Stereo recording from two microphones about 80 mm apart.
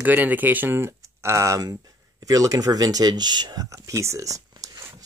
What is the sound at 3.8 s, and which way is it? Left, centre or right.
Speech, right.